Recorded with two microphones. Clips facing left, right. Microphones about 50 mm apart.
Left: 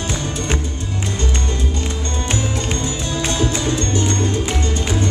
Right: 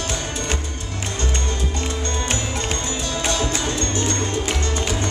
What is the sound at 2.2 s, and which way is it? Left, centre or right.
Music, left.